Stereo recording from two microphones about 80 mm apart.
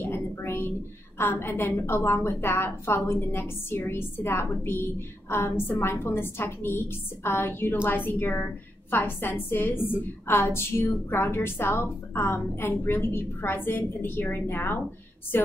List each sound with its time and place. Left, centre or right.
0.0 s a woman's voice: left